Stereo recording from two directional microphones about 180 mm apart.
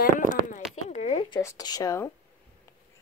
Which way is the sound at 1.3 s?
20° left (ahead or behind).